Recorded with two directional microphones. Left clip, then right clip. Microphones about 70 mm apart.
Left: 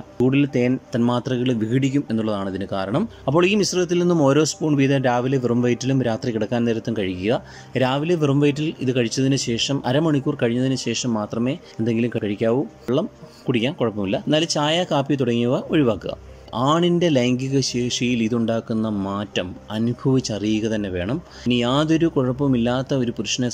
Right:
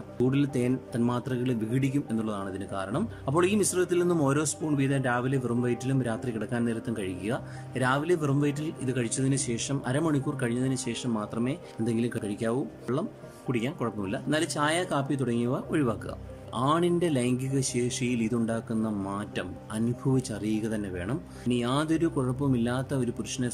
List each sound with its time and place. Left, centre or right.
0.2 s speech: centre
0.9 s speech: left
2.1 s speech: left
4.8 s speech: left
12.9 s speech: centre
13.5 s speech: left
17.5 s speech: centre
22.8 s speech: centre